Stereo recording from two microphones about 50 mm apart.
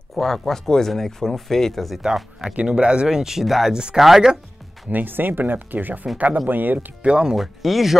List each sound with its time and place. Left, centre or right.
0.1 s speech: centre
2.5 s speech: right
4.8 s speech: right
7.0 s speech: centre
7.3 s speech: centre